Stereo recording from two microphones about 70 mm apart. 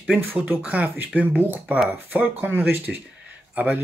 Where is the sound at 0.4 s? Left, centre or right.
Centre.